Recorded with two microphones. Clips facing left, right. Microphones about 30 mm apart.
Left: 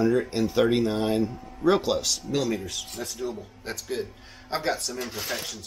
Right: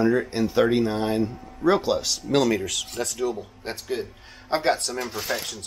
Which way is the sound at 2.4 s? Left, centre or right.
Right.